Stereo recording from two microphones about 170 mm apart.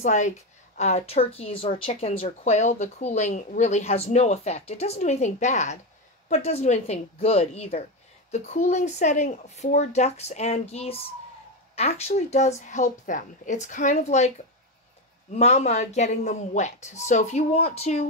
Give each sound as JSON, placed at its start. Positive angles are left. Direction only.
{"t": 0.0, "sound": "a woman's voice", "side_deg": 45}
{"t": 15.3, "sound": "speech", "side_deg": 40}